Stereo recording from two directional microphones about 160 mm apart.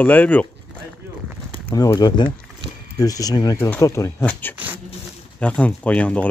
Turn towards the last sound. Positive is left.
turn(degrees=10)  # may be behind; listen again after turning